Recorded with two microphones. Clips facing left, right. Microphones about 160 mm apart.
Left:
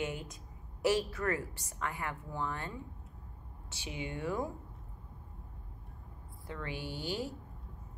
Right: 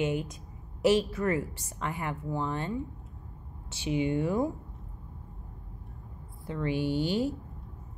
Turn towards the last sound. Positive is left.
turn(degrees=-20)  # may be behind; listen again after turning